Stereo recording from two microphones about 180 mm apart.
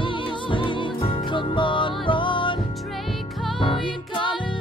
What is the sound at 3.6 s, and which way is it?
Music, 25° left (ahead or behind).